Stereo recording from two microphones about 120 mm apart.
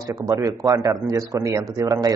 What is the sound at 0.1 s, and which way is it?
A man's voice, 30° right (ahead or behind).